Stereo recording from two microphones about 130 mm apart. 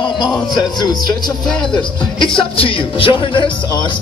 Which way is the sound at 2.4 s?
45° left (ahead or behind).